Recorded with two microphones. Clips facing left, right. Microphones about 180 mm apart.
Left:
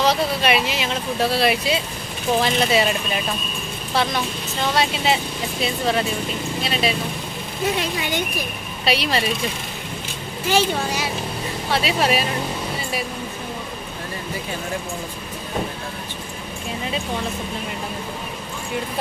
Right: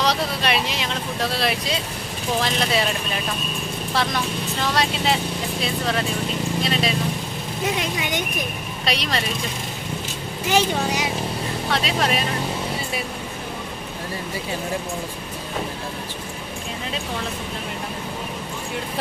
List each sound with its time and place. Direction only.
0.0 s a sound: 5° left (ahead or behind)
1.3 s speech: 5° left (ahead or behind)
3.9 s speech: centre (ahead or behind)
7.8 s speech: 20° right (ahead or behind)
8.8 s speech: 5° left (ahead or behind)
10.5 s speech: 15° right (ahead or behind)
11.7 s speech: 5° left (ahead or behind)